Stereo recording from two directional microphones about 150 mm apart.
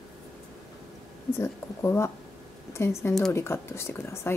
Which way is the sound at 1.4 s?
20° left (ahead or behind).